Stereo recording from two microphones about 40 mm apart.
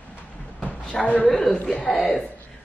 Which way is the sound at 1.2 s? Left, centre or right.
Centre.